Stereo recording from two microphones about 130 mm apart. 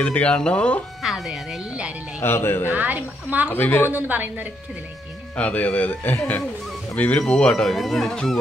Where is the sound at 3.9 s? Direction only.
15° right (ahead or behind).